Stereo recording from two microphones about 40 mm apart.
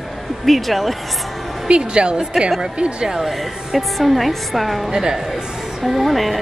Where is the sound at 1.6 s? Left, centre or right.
Right.